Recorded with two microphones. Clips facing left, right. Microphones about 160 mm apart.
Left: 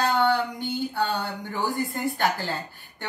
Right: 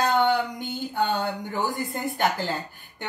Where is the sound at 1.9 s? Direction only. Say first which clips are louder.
Even; 20° right (ahead or behind).